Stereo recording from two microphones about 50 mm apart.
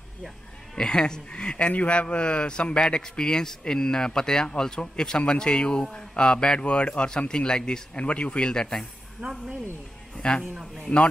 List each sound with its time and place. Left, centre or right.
0.7 s a man's voice: centre
10.1 s a man's voice: centre